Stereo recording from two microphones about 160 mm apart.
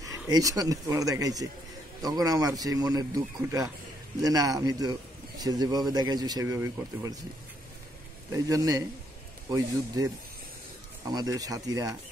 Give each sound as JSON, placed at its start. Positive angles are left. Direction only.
{"t": 0.0, "sound": "speech", "side_deg": -20}
{"t": 8.3, "sound": "speech", "side_deg": -20}